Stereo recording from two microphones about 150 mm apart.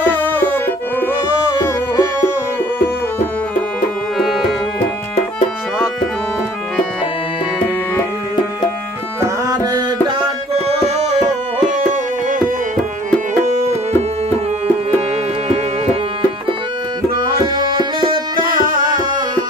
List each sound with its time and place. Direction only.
1.5 s music: 20° left (ahead or behind)
4.2 s music: centre (ahead or behind)
9.2 s tabla: 25° right (ahead or behind); by 11.1 s 45° right (ahead or behind)
11.9 s music: 65° right (ahead or behind)
15.4 s music: 45° right (ahead or behind)
17.2 s music: 30° right (ahead or behind)